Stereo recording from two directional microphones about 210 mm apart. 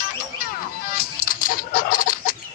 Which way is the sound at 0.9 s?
45° left (ahead or behind).